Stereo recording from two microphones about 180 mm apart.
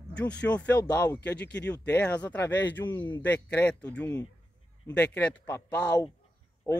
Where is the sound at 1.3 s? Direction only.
70° left (ahead or behind).